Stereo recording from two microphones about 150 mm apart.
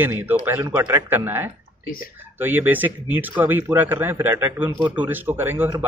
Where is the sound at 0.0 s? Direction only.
15° right (ahead or behind).